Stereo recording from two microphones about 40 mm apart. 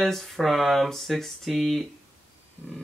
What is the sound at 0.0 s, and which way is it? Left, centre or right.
Speech, centre.